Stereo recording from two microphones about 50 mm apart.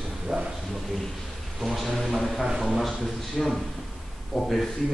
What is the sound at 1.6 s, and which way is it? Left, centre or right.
Speech, centre.